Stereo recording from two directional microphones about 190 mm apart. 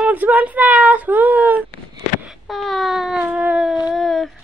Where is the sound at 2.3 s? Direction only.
Centre (ahead or behind).